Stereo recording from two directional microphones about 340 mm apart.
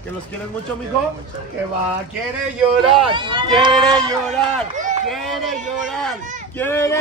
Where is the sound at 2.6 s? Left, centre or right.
Centre.